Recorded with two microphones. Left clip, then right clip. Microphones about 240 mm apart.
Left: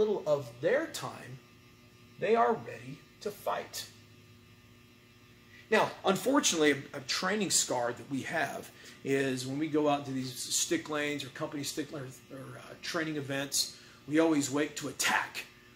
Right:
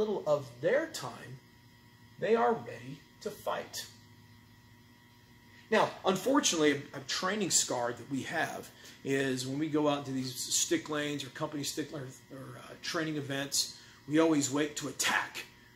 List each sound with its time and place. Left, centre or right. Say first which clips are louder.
0.0 s speech: left 1 dB; centre
2.1 s speech: left 1 dB; centre
5.7 s speech: left 1 dB; centre